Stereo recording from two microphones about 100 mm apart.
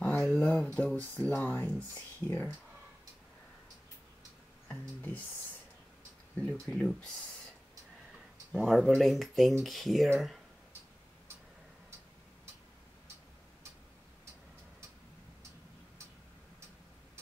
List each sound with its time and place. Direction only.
0.0 s a sound: 15° left (ahead or behind)
0.7 s speech: 15° left (ahead or behind)
4.6 s speech: 20° left (ahead or behind)
6.5 s speech: 5° left (ahead or behind)
8.5 s speech: centre (ahead or behind)